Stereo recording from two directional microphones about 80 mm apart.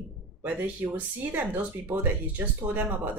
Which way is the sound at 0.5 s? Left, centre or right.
Right.